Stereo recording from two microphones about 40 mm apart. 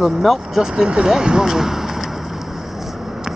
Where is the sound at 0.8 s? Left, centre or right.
Right.